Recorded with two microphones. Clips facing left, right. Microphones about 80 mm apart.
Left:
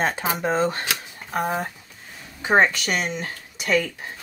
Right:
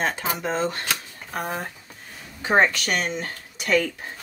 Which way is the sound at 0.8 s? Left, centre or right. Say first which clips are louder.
Left 1 dB; centre.